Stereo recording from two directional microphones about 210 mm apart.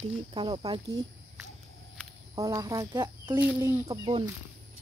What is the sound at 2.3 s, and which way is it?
Speech, 15° right (ahead or behind).